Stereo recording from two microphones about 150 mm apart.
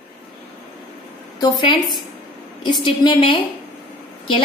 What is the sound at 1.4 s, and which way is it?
A woman's voice, 30° left (ahead or behind).